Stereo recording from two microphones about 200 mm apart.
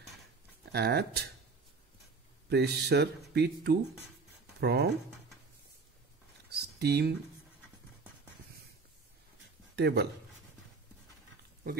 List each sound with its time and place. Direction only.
0.7 s speech: 55° right (ahead or behind)
2.5 s speech: 55° right (ahead or behind)
6.5 s a sound: 55° right (ahead or behind)
9.8 s speech: 55° right (ahead or behind)